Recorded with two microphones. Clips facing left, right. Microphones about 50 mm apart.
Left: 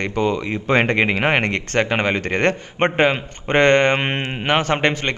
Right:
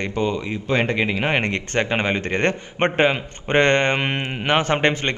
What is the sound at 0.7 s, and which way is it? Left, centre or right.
A man's voice, left.